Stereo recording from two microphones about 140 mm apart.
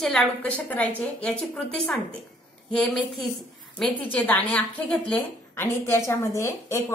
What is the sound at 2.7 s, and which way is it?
A woman's voice, centre (ahead or behind).